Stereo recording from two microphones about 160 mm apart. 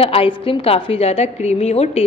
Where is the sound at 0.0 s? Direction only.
35° left (ahead or behind).